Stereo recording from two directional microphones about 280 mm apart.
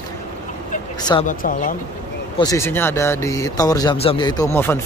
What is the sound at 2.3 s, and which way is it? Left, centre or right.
A man's voice, centre.